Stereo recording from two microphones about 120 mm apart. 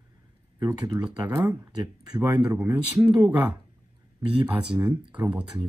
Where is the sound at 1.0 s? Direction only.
10° right (ahead or behind).